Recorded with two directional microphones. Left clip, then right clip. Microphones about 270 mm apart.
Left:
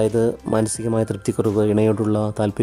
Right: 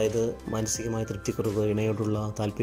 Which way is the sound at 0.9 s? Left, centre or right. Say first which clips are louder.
Left 10 dB; left.